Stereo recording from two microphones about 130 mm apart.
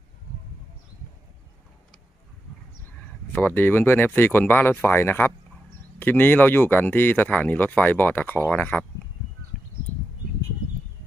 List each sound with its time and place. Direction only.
3.3 s speech: 15° left (ahead or behind)